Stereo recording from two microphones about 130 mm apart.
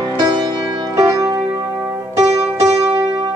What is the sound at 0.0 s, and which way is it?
Music, 35° right (ahead or behind).